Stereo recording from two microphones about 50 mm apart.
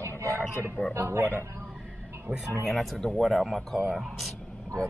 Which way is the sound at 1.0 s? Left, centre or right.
Right.